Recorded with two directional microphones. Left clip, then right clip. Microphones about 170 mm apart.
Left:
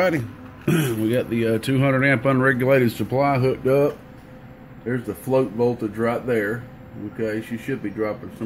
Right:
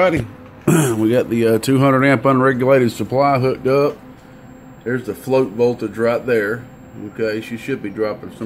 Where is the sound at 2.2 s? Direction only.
20° right (ahead or behind).